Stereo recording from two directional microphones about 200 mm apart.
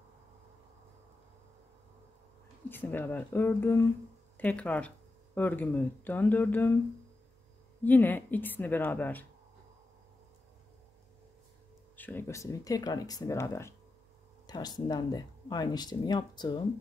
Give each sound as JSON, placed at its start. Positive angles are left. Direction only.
{"t": 2.7, "sound": "speech", "side_deg": 10}
{"t": 7.8, "sound": "speech", "side_deg": 10}
{"t": 12.0, "sound": "speech", "side_deg": 10}